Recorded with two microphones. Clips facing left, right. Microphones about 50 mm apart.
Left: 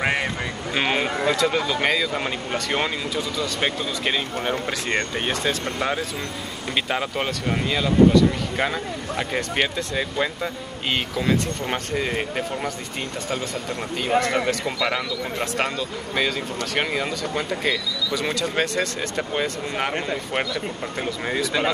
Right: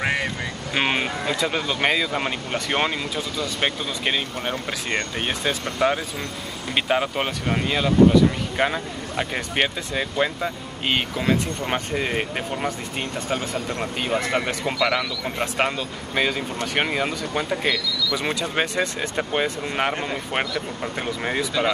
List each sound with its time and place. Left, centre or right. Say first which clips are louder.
0.0 s vehicle: left 1 dB; centre
0.7 s speech: even; centre
1.0 s speech: left 4 dB; centre
1.3 s speech: left 1 dB; centre
14.2 s speech: left 2 dB; centre
14.8 s speech: right 2 dB; right
15.3 s speech: right 2 dB; centre
21.0 s speech: even; centre